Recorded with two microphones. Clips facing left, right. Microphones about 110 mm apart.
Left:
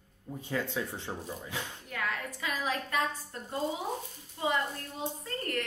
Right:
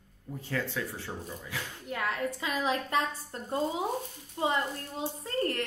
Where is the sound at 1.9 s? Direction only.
25° right (ahead or behind).